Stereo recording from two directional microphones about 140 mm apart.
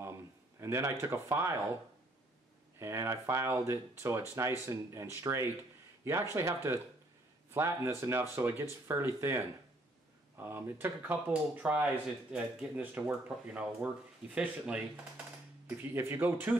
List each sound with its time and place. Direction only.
0.6 s speech: 20° right (ahead or behind)
2.8 s speech: 20° right (ahead or behind)
15.8 s speech: 15° right (ahead or behind)